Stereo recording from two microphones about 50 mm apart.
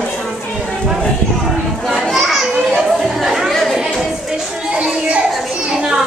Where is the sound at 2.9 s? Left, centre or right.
Centre.